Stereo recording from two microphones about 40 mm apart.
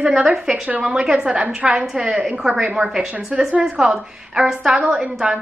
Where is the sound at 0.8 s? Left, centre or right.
Centre.